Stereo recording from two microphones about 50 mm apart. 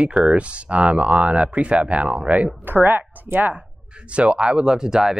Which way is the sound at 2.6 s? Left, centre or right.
Right.